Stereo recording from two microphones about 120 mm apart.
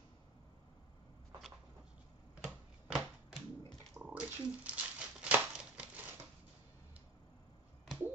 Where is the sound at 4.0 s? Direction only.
15° right (ahead or behind).